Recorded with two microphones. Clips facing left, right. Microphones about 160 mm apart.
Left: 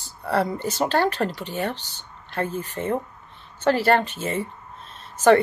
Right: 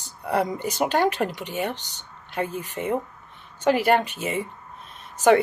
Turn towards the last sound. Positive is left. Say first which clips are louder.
# left 2 dB
turn(degrees=-15)  # may be behind; listen again after turning